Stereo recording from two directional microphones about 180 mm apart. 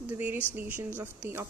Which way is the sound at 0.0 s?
10° right (ahead or behind).